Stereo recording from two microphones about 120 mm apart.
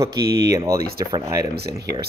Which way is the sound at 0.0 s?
25° right (ahead or behind).